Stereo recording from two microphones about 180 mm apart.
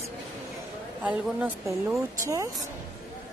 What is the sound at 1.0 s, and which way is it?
A woman's voice, 5° right (ahead or behind).